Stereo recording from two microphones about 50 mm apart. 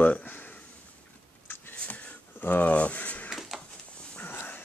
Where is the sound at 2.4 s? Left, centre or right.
Left.